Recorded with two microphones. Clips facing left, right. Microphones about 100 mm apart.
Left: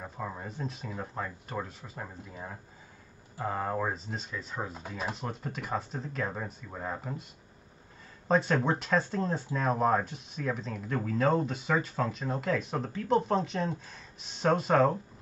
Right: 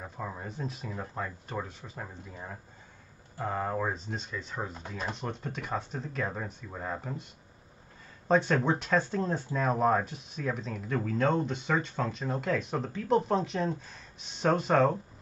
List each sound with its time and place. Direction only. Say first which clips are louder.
0.0 s speech: even; centre (ahead or behind)
8.3 s speech: right 1 dB; centre (ahead or behind)